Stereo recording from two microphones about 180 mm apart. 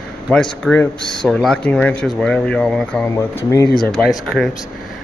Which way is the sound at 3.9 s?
5° left (ahead or behind).